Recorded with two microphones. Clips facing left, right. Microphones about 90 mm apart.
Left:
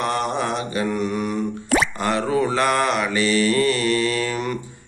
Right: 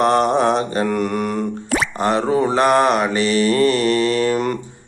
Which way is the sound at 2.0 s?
30° right (ahead or behind).